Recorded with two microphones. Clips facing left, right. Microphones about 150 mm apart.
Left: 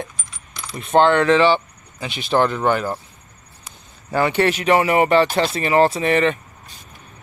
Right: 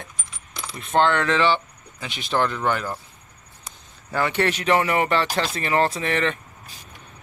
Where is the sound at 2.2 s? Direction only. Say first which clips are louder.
Left 5 dB; 30° left (ahead or behind).